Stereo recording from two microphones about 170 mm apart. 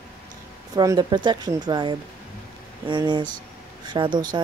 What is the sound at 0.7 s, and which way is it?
Speech, 25° right (ahead or behind).